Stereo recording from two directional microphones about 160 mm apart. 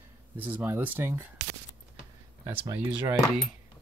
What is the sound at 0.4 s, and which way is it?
Speech, 10° right (ahead or behind).